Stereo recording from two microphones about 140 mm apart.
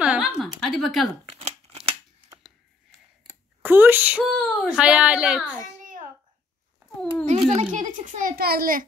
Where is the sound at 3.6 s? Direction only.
15° right (ahead or behind).